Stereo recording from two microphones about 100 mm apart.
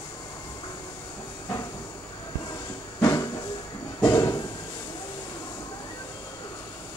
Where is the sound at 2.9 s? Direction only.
30° left (ahead or behind).